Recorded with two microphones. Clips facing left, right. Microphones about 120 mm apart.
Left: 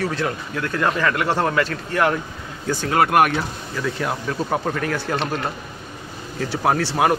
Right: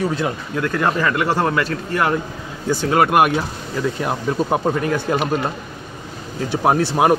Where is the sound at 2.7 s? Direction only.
15° right (ahead or behind).